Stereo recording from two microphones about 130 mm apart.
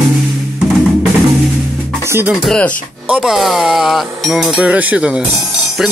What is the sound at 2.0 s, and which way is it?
Music, 20° right (ahead or behind).